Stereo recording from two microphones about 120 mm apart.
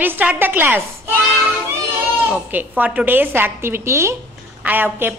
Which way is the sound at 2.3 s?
15° right (ahead or behind).